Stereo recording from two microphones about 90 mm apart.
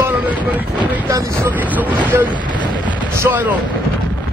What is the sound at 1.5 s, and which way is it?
Speech, 20° right (ahead or behind).